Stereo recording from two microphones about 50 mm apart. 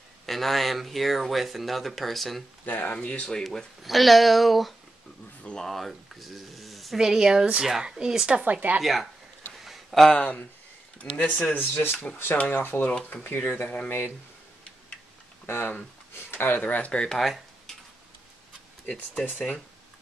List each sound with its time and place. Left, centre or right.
0.3 s speech: centre
2.6 s speech: left; by 3.4 s centre
3.4 s speech: centre
8.3 s speech: right
8.8 s speech: centre
9.6 s a sound: centre
10.1 s speech: left
11.5 s speech: left
13.8 s speech: left
15.4 s speech: left
16.3 s speech: left
17.2 s tick-tock: centre
19.3 s speech: left